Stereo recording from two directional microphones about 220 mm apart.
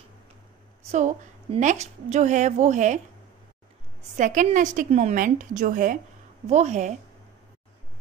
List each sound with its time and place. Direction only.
0.9 s a woman's voice: 30° right (ahead or behind)
4.2 s a woman's voice: 35° right (ahead or behind)